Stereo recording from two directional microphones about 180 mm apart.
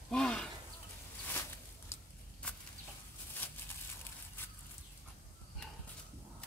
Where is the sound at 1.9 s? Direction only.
15° left (ahead or behind).